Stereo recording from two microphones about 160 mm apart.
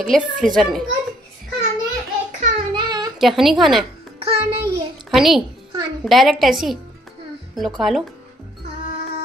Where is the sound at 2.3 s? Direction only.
50° right (ahead or behind).